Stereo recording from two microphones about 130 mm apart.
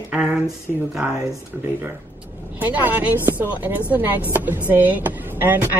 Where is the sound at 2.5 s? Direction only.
15° right (ahead or behind).